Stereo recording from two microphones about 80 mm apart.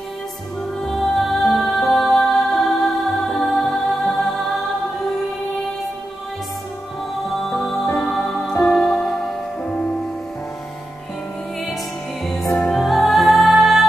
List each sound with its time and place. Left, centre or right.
0.8 s music: centre
7.8 s music: centre
8.1 s music: centre
12.4 s music: centre
12.8 s music: centre